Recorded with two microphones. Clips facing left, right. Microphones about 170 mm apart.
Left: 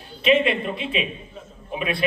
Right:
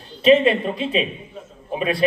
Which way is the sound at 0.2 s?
35° right (ahead or behind).